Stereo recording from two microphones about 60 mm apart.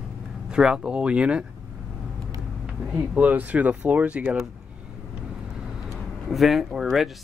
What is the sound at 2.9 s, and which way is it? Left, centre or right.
Speech, right.